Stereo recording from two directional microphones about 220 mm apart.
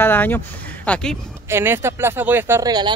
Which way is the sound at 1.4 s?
10° right (ahead or behind).